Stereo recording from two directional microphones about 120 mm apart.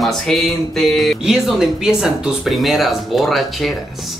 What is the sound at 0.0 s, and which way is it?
Speech, centre (ahead or behind).